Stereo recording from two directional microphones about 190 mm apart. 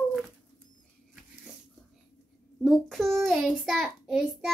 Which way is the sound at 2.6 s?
Centre (ahead or behind).